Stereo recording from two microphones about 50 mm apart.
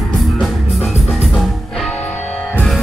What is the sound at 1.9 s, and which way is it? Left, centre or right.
Music, left.